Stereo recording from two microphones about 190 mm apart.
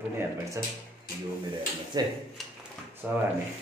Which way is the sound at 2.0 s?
20° right (ahead or behind).